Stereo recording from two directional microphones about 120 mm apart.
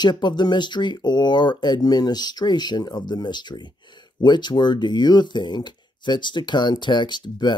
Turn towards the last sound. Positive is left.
turn(degrees=40)  # may be behind; listen again after turning